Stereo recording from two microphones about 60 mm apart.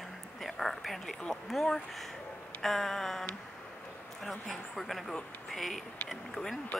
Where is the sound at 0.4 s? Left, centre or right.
Centre.